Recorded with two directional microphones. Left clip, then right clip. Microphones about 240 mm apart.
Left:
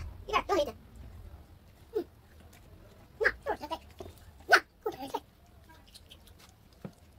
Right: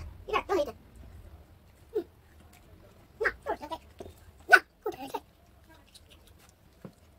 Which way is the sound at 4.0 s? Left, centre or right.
Centre.